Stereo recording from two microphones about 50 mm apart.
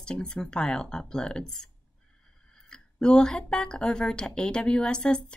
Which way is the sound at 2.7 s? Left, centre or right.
Centre.